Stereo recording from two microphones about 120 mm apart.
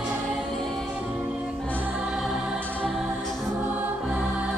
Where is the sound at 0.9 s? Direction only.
10° right (ahead or behind).